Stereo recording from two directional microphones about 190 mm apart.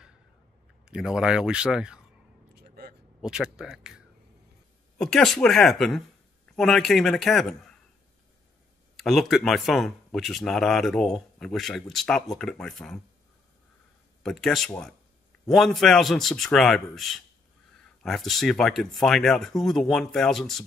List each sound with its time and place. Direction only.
0.8 s speech: 5° right (ahead or behind)
2.5 s a sound: 55° right (ahead or behind)
3.2 s speech: 5° right (ahead or behind)
8.9 s speech: centre (ahead or behind)
14.2 s speech: centre (ahead or behind)